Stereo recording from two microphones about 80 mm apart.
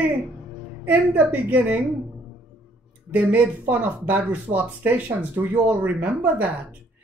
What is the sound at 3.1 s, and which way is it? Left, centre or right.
Speech, right.